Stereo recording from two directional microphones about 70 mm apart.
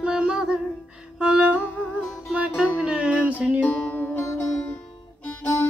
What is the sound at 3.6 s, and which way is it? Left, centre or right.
Music, left.